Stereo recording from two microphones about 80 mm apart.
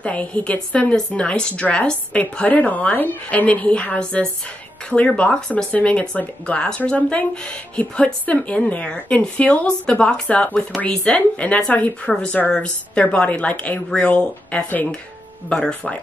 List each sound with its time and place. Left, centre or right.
0.0 s speech: centre